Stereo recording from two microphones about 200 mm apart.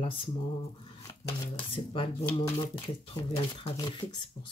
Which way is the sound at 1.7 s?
25° left (ahead or behind).